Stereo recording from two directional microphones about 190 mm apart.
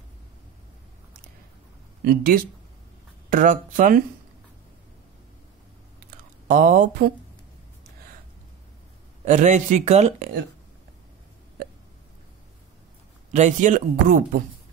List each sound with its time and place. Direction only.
2.0 s speech: 50° right (ahead or behind)
5.9 s a sound: 50° right (ahead or behind)
9.2 s speech: 40° right (ahead or behind)
13.3 s speech: 40° right (ahead or behind)